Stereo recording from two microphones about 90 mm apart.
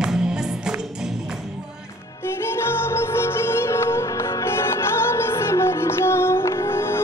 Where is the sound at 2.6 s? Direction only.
25° left (ahead or behind).